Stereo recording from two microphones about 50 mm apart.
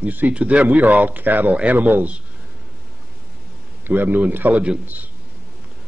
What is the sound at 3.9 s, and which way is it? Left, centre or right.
A man's voice, right.